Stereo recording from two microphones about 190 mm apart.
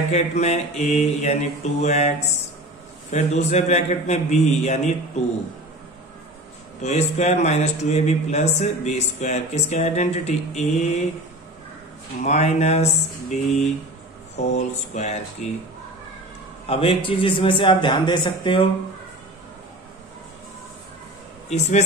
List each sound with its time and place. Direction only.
0.1 s a man's voice: 35° left (ahead or behind)
6.8 s a man's voice: 35° left (ahead or behind)
12.2 s a man's voice: 35° left (ahead or behind)
16.6 s a man's voice: 30° left (ahead or behind)
21.5 s a man's voice: 35° left (ahead or behind)